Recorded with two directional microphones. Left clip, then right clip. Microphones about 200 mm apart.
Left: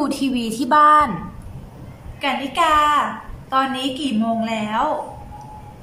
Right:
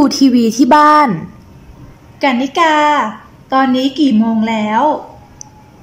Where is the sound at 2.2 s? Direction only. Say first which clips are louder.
Right 7 dB; 35° right (ahead or behind).